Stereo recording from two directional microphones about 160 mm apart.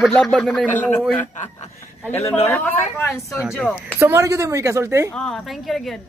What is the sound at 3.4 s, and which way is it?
Speech, centre (ahead or behind).